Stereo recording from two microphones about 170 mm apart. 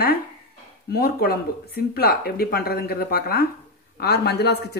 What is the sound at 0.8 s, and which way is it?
Speech, 65° left (ahead or behind).